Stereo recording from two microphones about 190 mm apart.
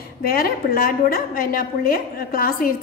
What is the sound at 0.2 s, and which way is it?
A woman's voice, 50° left (ahead or behind).